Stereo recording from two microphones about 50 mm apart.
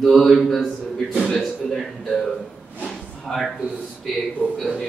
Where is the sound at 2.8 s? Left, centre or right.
Centre.